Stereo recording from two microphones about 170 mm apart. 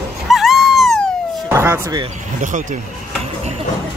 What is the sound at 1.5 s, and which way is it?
Speech, 15° right (ahead or behind).